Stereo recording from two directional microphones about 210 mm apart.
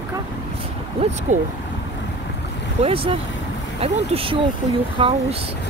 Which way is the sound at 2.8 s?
25° right (ahead or behind).